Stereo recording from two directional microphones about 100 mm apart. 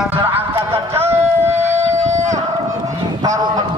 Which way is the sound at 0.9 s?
25° right (ahead or behind).